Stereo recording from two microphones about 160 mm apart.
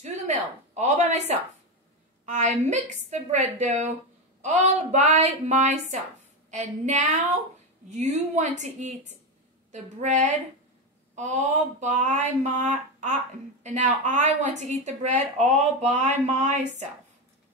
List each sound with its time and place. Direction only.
0.0 s a woman's voice: 45° right (ahead or behind)